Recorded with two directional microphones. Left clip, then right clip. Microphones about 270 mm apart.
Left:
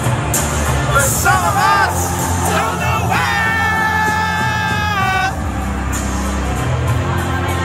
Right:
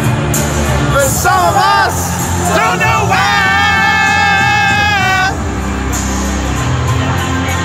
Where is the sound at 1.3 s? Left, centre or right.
Right.